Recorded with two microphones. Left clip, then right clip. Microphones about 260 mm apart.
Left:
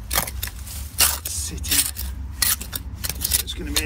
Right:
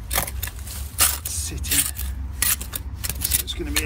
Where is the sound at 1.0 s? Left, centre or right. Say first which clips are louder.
Left 2 dB; centre.